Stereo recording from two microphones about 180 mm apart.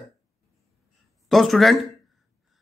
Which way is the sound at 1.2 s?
Centre (ahead or behind).